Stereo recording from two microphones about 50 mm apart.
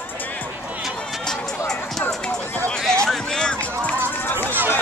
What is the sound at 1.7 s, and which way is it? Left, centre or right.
Music, centre.